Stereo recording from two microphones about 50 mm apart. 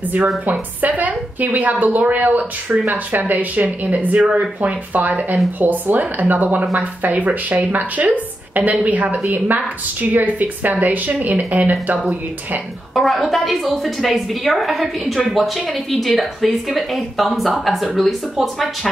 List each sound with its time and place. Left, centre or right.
0.5 s speech: right
4.2 s speech: centre
4.6 s speech: right
12.9 s a woman's voice: centre